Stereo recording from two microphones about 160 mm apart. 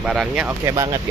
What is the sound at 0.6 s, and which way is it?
Speech, 25° right (ahead or behind).